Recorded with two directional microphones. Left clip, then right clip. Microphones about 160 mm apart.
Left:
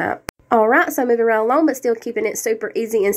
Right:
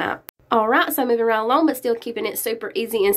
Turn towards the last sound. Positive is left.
turn(degrees=5)  # may be behind; listen again after turning